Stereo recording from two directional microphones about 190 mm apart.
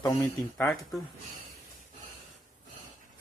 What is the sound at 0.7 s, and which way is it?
Speech, centre (ahead or behind).